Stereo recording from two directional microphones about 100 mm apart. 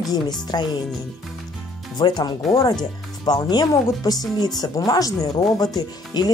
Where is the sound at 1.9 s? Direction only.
45° left (ahead or behind).